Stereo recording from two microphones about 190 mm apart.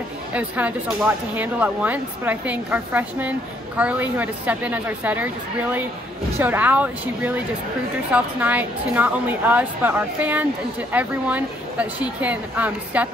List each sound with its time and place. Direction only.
0.3 s speech: 5° right (ahead or behind)